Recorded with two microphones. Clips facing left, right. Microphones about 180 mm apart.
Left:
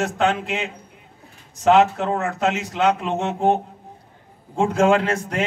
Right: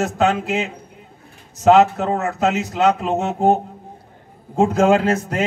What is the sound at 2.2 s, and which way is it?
Speech, 5° right (ahead or behind).